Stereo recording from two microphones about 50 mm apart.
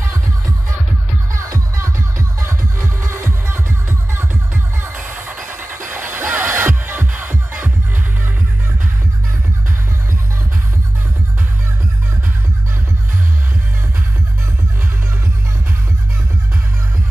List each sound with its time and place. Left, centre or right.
1.3 s music: right